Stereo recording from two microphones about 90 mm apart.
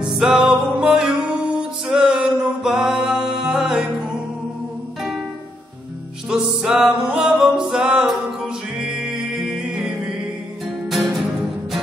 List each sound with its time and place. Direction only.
0.0 s music: 5° right (ahead or behind)
6.3 s music: 5° right (ahead or behind)